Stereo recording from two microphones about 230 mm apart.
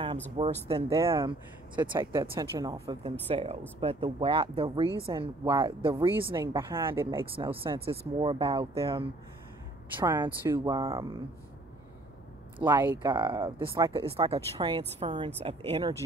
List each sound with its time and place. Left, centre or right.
0.4 s speech: right
0.8 s speech: centre
6.3 s speech: centre
7.3 s speech: right
9.9 s speech: centre
12.6 s speech: centre
14.0 s speech: right